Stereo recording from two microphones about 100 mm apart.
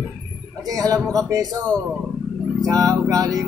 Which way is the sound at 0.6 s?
35° right (ahead or behind).